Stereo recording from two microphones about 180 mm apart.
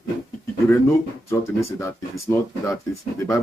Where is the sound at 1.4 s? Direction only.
15° left (ahead or behind).